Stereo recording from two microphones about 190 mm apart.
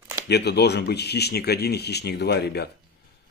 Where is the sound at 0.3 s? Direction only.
60° left (ahead or behind).